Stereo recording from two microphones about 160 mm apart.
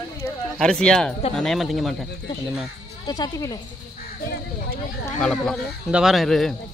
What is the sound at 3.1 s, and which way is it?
Speech, 25° left (ahead or behind).